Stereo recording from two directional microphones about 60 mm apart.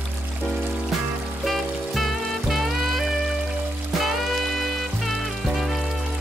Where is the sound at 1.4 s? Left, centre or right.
Centre.